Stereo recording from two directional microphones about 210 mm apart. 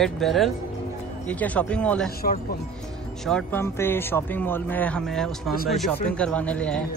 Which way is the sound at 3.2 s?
5° left (ahead or behind).